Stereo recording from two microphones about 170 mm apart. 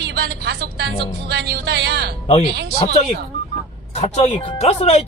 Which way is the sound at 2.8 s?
35° left (ahead or behind).